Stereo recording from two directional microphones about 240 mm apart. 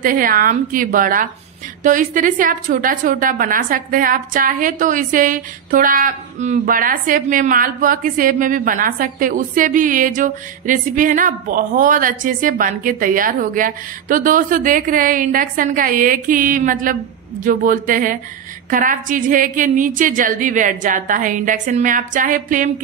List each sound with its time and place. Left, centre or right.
0.0 s a woman's voice: right